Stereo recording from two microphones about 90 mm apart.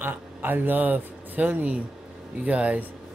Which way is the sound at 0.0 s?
20° right (ahead or behind).